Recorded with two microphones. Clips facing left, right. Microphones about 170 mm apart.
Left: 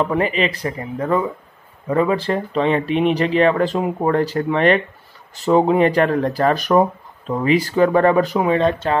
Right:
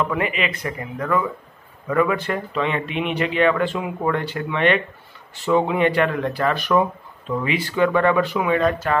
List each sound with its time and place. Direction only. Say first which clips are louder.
0.0 s speech: left 4 dB; 35° left (ahead or behind)